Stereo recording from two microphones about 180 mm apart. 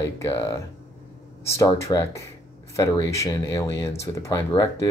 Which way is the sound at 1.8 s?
15° left (ahead or behind).